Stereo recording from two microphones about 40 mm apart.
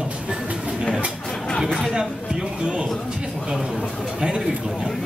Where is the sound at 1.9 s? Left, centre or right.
Centre.